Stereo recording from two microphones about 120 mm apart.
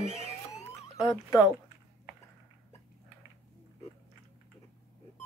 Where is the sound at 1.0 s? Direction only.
35° left (ahead or behind).